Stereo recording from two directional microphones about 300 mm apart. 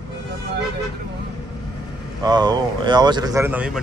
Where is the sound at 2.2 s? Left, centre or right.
Centre.